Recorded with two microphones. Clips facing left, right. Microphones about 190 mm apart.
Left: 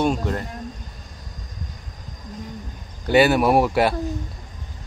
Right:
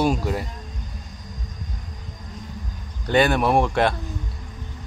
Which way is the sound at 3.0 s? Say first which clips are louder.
Left 3 dB; 5° left (ahead or behind).